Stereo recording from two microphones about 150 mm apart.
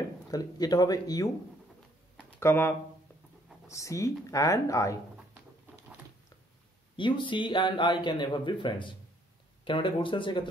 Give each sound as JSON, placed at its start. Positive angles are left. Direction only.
{"t": 0.3, "sound": "speech", "side_deg": 25}
{"t": 2.4, "sound": "speech", "side_deg": 15}
{"t": 7.0, "sound": "speech", "side_deg": 35}